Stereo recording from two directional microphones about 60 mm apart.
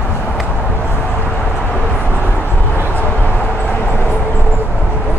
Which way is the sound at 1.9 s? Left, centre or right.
Right.